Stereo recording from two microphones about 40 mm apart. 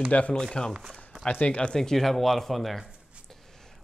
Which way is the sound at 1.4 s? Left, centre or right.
Left.